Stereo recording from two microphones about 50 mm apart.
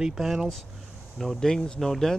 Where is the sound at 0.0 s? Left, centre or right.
Centre.